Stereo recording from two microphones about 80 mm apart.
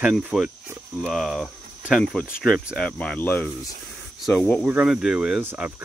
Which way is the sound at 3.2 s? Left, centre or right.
Left.